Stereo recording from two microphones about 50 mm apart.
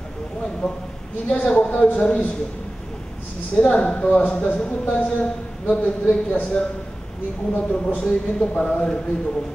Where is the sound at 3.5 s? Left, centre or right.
Centre.